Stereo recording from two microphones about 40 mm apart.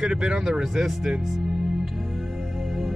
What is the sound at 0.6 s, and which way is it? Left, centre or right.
Speech, centre.